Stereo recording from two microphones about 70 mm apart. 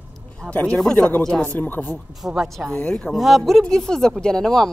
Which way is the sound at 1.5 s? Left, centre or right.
Left.